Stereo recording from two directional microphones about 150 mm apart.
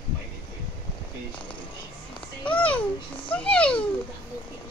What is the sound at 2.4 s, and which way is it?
Babbling, 10° left (ahead or behind).